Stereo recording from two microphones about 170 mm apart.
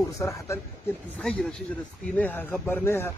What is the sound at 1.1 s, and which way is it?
Speech, 5° left (ahead or behind).